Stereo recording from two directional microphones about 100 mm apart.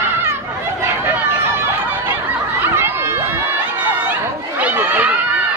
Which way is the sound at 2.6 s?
20° right (ahead or behind).